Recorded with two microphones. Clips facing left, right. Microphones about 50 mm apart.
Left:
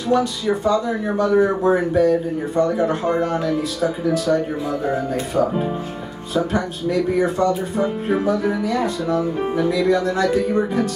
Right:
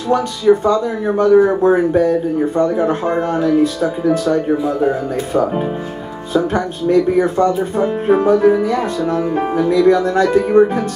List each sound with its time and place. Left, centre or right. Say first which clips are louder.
0.1 s speech: right 6 dB; right
6.3 s speech: right 4 dB; right